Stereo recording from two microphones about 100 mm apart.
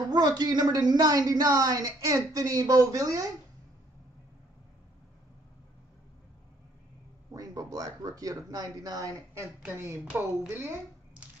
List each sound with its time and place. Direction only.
0.0 s a woman's voice: 40° right (ahead or behind)
7.3 s a woman's voice: 40° right (ahead or behind)
10.0 s speech: 20° right (ahead or behind)